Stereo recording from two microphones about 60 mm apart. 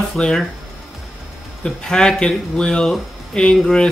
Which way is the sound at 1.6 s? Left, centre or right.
Centre.